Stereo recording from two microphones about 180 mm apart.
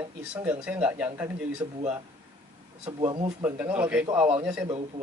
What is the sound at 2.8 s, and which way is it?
Speech, 30° right (ahead or behind).